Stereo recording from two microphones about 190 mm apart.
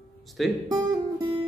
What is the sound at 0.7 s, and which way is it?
Music, 20° right (ahead or behind).